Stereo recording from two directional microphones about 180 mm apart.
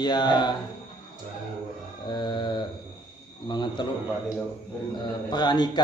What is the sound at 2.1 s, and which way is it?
A man's voice, 25° left (ahead or behind).